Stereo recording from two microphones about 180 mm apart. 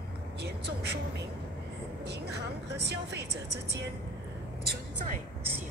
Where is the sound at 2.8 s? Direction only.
70° right (ahead or behind).